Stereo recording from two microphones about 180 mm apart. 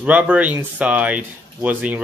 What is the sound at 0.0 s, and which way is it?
Speech, 5° right (ahead or behind).